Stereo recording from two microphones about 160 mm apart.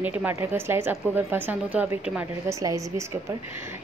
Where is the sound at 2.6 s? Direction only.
20° right (ahead or behind).